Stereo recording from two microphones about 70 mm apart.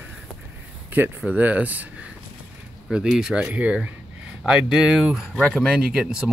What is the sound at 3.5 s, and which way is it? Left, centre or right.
Speech, centre.